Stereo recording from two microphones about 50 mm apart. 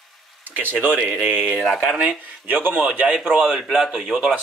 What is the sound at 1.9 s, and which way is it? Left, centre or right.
Speech, right.